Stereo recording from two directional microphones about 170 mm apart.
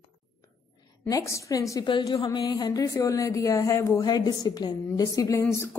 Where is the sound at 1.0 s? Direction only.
20° left (ahead or behind).